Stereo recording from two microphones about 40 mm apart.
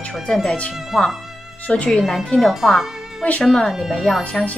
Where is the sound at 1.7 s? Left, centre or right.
Centre.